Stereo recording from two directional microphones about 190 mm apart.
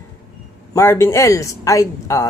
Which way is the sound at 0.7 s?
15° left (ahead or behind).